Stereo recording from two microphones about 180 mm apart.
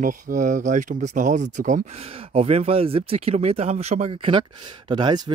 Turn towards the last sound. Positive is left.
turn(degrees=-25)  # may be behind; listen again after turning